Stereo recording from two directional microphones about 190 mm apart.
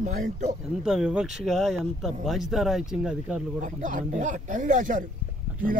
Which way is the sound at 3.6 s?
40° right (ahead or behind).